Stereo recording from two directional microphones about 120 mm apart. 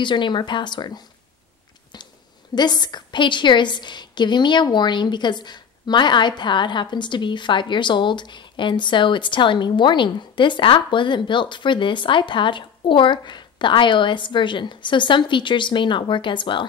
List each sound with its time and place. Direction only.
0.0 s a woman's voice: 40° left (ahead or behind)
2.5 s a woman's voice: 35° left (ahead or behind)